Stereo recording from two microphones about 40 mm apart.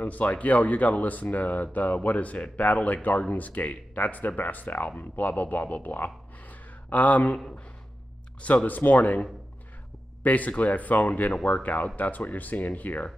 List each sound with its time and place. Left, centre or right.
0.0 s speech: left
7.3 s speech: centre
8.6 s speech: left
10.2 s speech: left